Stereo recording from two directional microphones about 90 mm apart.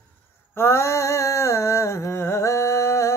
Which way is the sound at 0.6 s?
30° left (ahead or behind).